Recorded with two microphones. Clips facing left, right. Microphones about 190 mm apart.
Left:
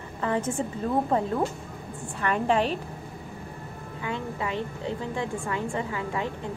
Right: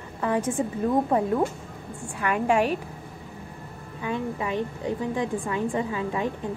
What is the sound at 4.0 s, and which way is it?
A woman's voice, 15° right (ahead or behind).